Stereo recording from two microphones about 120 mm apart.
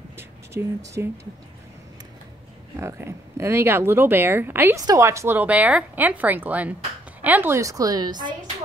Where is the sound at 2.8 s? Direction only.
20° right (ahead or behind); by 8.4 s 35° right (ahead or behind).